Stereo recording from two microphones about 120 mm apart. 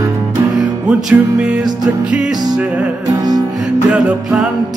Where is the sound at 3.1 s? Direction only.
30° right (ahead or behind).